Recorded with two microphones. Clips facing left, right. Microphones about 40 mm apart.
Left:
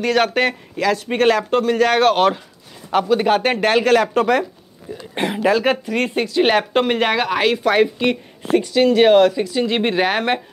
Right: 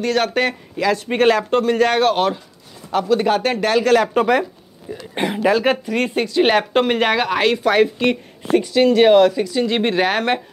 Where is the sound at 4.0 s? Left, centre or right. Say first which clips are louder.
Even; centre.